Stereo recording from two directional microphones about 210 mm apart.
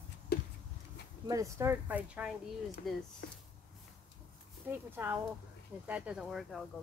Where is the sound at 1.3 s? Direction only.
15° right (ahead or behind).